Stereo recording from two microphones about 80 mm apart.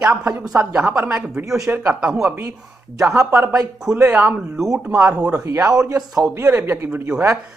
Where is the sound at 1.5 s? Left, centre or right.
Right.